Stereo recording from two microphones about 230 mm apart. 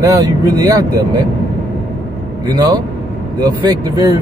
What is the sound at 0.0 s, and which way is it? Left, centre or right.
Speech, centre.